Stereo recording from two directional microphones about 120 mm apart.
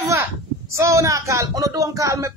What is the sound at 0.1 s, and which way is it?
Speech, 25° right (ahead or behind).